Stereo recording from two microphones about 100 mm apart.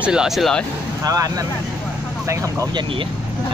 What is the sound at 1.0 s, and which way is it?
Speech, 40° right (ahead or behind).